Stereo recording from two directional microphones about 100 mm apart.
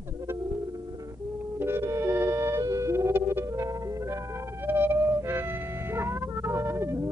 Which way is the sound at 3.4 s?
30° right (ahead or behind).